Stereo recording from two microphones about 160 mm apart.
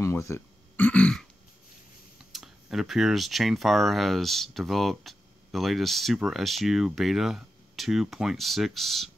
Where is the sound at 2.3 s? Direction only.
Centre (ahead or behind).